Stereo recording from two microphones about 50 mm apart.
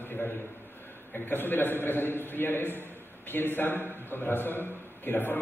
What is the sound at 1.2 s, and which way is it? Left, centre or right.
A man's voice, left.